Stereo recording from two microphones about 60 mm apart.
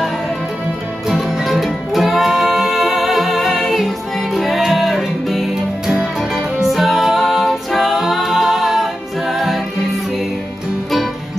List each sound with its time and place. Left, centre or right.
1.0 s music: centre